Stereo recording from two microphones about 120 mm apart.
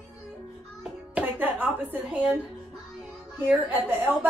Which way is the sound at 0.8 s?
15° right (ahead or behind).